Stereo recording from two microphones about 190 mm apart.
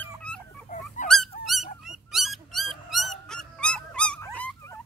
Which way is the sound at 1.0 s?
40° left (ahead or behind).